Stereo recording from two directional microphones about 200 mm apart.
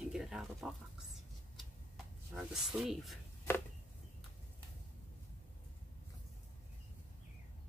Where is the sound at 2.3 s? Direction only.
Centre (ahead or behind).